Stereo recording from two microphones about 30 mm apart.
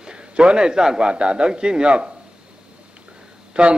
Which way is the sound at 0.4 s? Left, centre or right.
Right.